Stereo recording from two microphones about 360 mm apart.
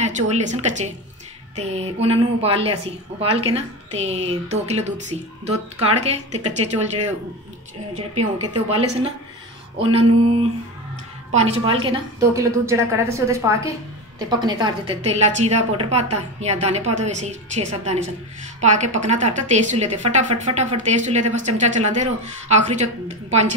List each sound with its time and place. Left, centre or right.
0.0 s a woman's voice: centre
8.7 s a woman's voice: centre
11.3 s a woman's voice: centre